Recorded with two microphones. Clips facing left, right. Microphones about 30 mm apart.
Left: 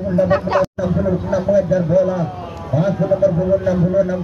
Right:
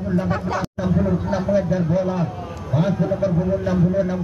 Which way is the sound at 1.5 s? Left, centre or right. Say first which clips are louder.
Left 5 dB; right.